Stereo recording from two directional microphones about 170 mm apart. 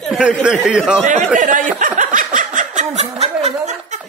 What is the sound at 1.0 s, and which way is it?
Snicker, 50° right (ahead or behind).